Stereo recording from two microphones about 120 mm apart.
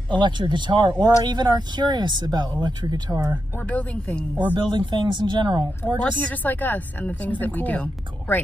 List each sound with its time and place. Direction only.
0.1 s speech: 40° right (ahead or behind)
3.6 s a woman's voice: 10° left (ahead or behind)
4.6 s speech: 40° right (ahead or behind)
6.3 s a woman's voice: 15° left (ahead or behind)